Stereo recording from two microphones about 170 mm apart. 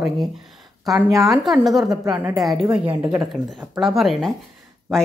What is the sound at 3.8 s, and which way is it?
Speech, centre (ahead or behind).